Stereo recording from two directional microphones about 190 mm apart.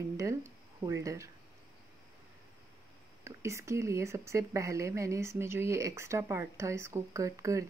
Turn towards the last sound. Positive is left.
turn(degrees=-15)  # may be behind; listen again after turning